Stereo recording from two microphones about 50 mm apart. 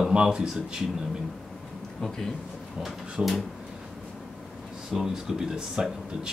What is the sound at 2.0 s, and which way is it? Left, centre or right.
Speech, centre.